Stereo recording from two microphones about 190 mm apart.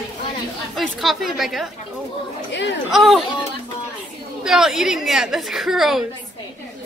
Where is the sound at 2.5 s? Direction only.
70° left (ahead or behind).